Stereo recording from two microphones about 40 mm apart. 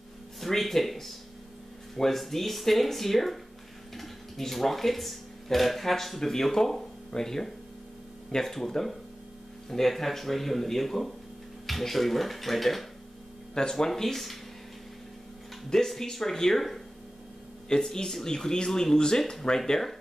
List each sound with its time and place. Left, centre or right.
0.4 s speech: centre
15.7 s speech: centre
17.6 s speech: centre